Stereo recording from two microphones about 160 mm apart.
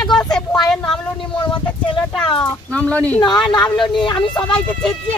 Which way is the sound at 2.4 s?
5° left (ahead or behind).